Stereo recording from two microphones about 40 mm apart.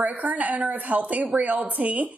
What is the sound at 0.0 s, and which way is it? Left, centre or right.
A woman's voice, right.